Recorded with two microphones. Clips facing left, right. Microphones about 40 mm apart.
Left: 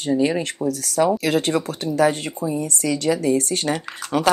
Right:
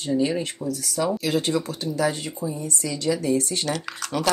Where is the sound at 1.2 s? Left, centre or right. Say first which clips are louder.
Left 3 dB; left.